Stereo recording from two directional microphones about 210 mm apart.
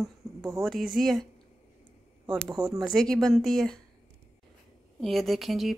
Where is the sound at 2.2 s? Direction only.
20° right (ahead or behind).